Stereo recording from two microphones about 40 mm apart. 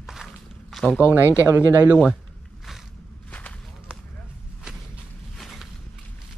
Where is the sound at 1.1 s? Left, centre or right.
Right.